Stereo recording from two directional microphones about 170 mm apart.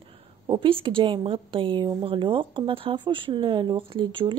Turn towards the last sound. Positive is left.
turn(degrees=-30)  # may be behind; listen again after turning